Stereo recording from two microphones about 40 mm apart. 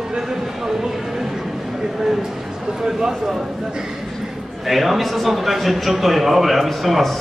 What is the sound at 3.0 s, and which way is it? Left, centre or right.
Speech, centre.